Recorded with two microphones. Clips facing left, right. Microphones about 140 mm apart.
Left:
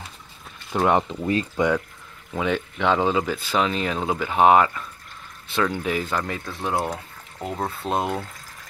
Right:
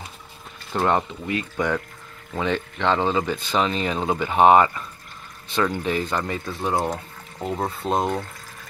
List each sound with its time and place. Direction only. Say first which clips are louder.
0.7 s speech: left 1 dB; 10° left (ahead or behind)
1.6 s speech: left 3 dB; 25° left (ahead or behind)
2.3 s speech: even; 5° left (ahead or behind)